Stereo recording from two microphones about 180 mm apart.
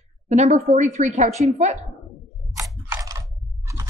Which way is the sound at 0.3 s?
40° right (ahead or behind).